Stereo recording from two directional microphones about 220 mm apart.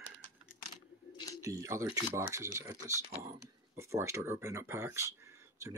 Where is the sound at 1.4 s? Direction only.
15° right (ahead or behind).